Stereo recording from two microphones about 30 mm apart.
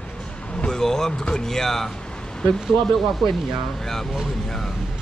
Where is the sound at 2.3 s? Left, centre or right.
Left.